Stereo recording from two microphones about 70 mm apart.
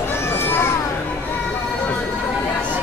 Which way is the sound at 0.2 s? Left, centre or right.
Left.